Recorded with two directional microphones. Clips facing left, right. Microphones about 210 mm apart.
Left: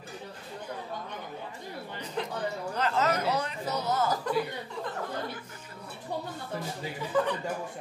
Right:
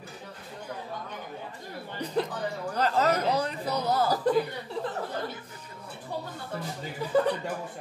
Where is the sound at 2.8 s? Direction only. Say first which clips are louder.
Right 3 dB; 35° right (ahead or behind).